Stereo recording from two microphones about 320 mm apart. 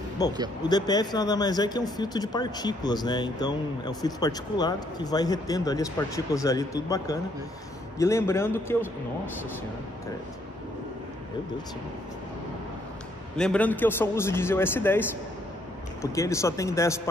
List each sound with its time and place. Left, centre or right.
0.2 s speech: centre
13.4 s speech: centre